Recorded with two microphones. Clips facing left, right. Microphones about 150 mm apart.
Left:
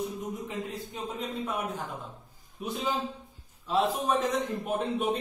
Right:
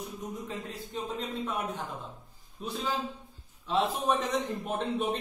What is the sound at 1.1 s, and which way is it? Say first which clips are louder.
A man's voice: left 1 dB; 10° left (ahead or behind).